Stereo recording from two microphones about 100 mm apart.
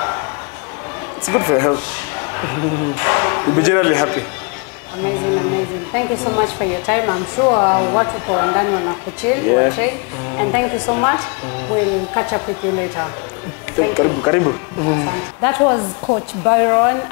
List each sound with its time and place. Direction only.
1.2 s a woman's voice: 30° left (ahead or behind)